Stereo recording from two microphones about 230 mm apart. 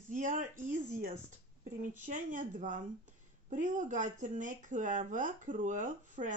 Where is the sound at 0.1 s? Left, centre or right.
Right.